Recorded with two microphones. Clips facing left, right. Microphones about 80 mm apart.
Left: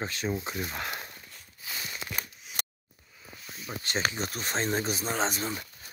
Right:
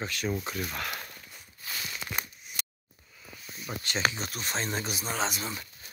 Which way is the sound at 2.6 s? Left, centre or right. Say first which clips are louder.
Left 3 dB; left.